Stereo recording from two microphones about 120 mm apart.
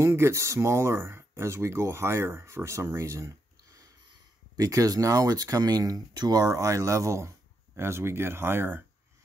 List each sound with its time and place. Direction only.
0.0 s speech: 25° right (ahead or behind)